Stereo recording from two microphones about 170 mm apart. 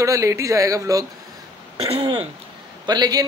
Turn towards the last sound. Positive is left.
turn(degrees=-25)  # may be behind; listen again after turning